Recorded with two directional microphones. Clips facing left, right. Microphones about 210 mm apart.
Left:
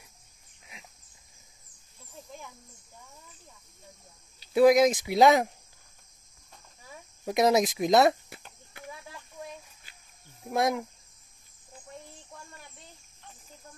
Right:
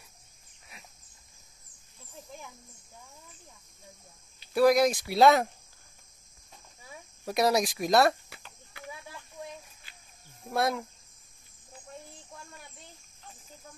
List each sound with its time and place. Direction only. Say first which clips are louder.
4.6 s speech: left 3 dB; 20° left (ahead or behind)
7.2 s speech: left 3 dB; 20° left (ahead or behind)
8.3 s a sound: left 3 dB; 50° left (ahead or behind)
10.5 s speech: left 2 dB; 15° left (ahead or behind)